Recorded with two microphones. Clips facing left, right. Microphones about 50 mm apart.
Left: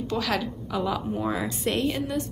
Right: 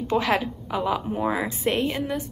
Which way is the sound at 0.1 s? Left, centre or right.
Right.